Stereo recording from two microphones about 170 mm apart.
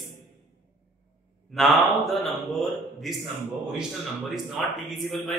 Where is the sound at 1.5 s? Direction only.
Centre (ahead or behind).